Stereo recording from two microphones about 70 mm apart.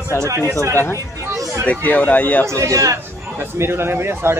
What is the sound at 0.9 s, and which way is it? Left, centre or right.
Chatter, right.